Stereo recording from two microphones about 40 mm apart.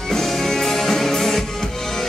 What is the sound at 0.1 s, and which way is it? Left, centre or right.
Music, centre.